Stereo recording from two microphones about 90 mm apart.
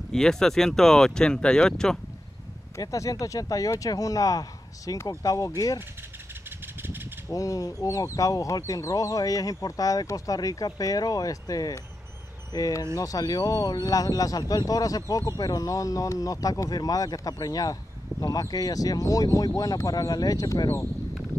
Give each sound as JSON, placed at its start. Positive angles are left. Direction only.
{"t": 0.1, "sound": "speech", "side_deg": 5}
{"t": 2.8, "sound": "speech", "side_deg": 40}
{"t": 6.8, "sound": "a sound", "side_deg": -25}
{"t": 7.2, "sound": "speech", "side_deg": 40}